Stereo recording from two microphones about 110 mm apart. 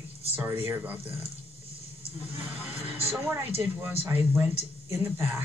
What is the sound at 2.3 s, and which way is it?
Speech, 60° right (ahead or behind).